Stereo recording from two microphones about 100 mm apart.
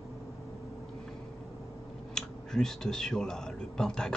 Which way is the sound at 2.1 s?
5° left (ahead or behind).